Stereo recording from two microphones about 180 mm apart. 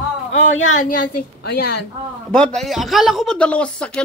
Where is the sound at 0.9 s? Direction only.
60° left (ahead or behind).